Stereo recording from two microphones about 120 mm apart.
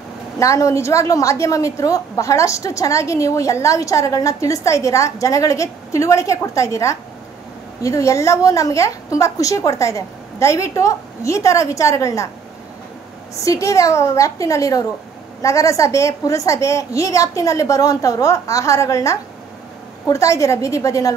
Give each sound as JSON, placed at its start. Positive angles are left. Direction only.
{"t": 0.4, "sound": "a woman's voice", "side_deg": 25}
{"t": 13.4, "sound": "a woman's voice", "side_deg": 25}